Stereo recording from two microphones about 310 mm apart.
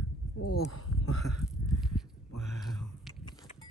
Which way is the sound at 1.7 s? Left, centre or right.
Centre.